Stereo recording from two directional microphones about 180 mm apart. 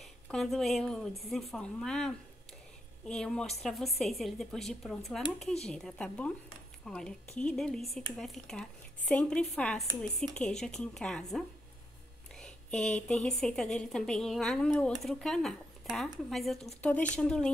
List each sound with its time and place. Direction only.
0.3 s speech: centre (ahead or behind)
12.4 s speech: 5° left (ahead or behind)